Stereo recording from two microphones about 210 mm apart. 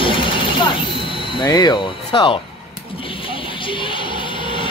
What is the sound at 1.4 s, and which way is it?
Speech, 20° left (ahead or behind).